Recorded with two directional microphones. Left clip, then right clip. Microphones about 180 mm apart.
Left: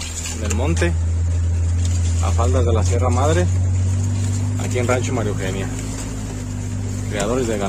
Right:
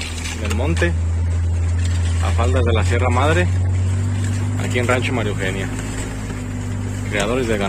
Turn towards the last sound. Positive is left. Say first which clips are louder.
# right 2 dB
turn(degrees=10)  # may be behind; listen again after turning